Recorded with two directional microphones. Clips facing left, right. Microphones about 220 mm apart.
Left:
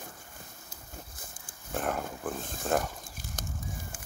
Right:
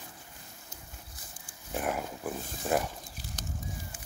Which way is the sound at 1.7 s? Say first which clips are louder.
Even; 10° right (ahead or behind).